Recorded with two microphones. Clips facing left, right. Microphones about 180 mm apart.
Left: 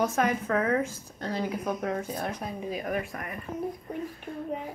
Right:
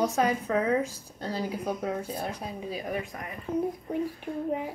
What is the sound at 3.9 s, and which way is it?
Speech, 15° right (ahead or behind).